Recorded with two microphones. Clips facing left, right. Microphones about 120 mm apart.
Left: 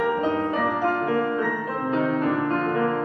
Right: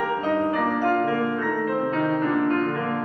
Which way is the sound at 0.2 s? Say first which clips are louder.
Right 1 dB; 20° left (ahead or behind).